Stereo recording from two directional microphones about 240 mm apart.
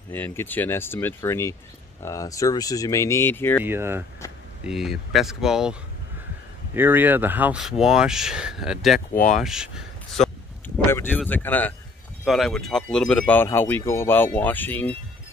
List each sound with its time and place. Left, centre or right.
0.1 s speech: centre
3.6 s speech: centre
9.1 s speech: left
9.4 s speech: centre
10.9 s speech: centre